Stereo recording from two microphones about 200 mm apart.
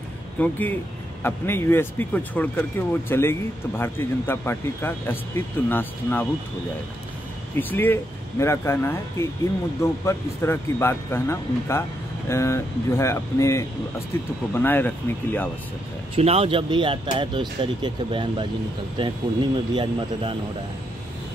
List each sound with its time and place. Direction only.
0.4 s speech: 10° left (ahead or behind)
7.5 s speech: 10° left (ahead or behind)
16.2 s speech: 30° right (ahead or behind)